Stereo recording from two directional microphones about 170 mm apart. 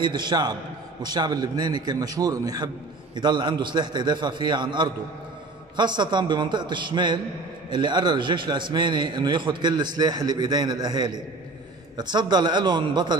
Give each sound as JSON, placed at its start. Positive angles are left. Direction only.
{"t": 0.0, "sound": "a man's voice", "side_deg": -25}